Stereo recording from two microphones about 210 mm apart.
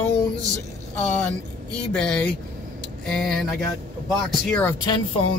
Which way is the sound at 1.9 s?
5° left (ahead or behind).